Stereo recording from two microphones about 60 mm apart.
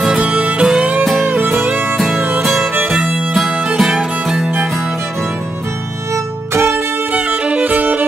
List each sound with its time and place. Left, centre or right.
0.0 s music: centre
0.4 s music: centre
1.0 s music: centre
1.3 s music: right
2.0 s music: centre
6.1 s music: right
7.1 s music: right